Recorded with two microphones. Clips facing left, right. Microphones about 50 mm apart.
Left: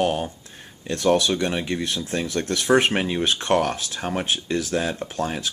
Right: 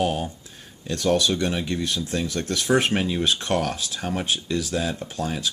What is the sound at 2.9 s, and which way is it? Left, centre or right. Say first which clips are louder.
Speech: even; left.